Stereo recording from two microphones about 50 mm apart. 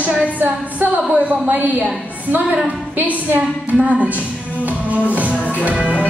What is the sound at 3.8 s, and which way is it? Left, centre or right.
Music, right.